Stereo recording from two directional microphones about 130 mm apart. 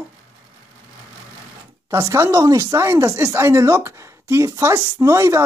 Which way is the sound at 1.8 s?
20° right (ahead or behind).